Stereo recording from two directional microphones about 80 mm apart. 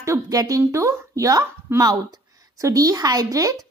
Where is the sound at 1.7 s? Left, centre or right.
Right.